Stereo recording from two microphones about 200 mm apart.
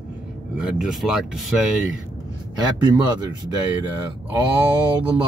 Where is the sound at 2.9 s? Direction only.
20° right (ahead or behind).